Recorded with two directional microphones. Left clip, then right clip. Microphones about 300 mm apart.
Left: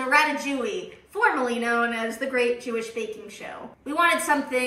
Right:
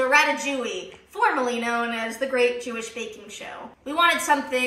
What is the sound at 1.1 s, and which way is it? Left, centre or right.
A woman's voice, centre.